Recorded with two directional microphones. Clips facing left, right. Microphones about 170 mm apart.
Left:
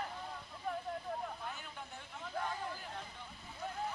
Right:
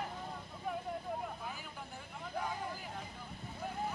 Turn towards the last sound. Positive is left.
turn(degrees=-5)  # may be behind; listen again after turning